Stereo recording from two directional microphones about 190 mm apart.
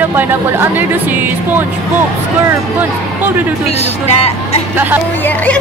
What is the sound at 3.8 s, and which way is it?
Speech, 35° left (ahead or behind).